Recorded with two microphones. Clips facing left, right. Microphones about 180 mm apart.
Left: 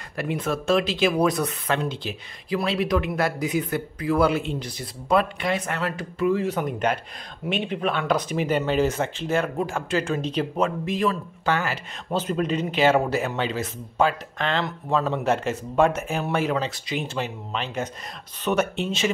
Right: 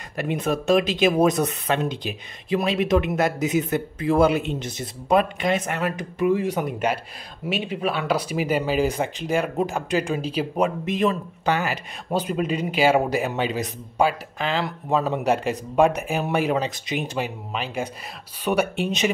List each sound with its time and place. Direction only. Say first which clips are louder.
0.2 s speech: right 2 dB; 20° right (ahead or behind)